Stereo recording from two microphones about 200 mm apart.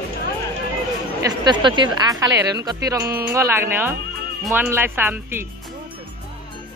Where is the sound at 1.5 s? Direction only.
25° right (ahead or behind).